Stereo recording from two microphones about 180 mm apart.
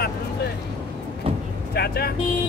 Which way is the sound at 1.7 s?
60° left (ahead or behind).